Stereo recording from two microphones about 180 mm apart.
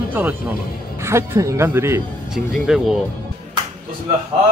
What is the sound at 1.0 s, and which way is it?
Speech, 15° right (ahead or behind).